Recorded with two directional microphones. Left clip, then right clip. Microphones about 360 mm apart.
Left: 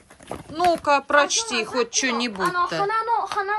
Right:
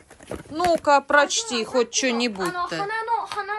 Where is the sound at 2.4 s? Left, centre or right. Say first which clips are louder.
Left 4 dB; left.